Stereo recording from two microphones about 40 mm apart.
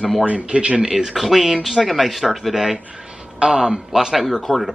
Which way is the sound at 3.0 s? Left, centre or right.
Centre.